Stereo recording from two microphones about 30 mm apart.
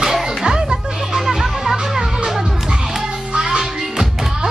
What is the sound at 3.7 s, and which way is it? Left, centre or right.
Music, centre.